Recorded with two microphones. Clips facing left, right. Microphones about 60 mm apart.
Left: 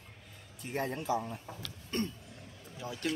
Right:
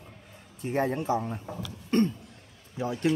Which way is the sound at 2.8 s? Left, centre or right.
Right.